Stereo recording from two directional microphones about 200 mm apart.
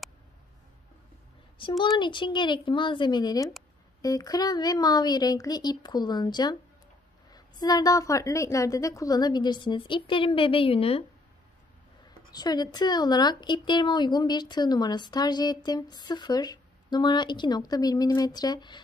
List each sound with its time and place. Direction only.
1.6 s speech: 25° left (ahead or behind)
12.1 s speech: 20° left (ahead or behind)